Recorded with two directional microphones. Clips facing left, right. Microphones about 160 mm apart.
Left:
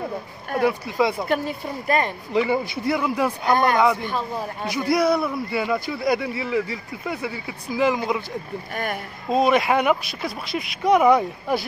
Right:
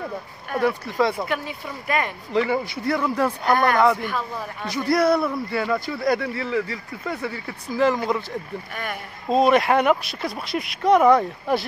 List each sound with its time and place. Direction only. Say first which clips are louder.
0.6 s speech: left 1 dB; 10° left (ahead or behind)
1.3 s speech: left 4 dB; 40° left (ahead or behind)
2.3 s speech: left 1 dB; 15° left (ahead or behind)
3.4 s speech: even; 20° left (ahead or behind)
4.6 s speech: right 1 dB; centre (ahead or behind)
9.3 s speech: right 1 dB; 5° left (ahead or behind)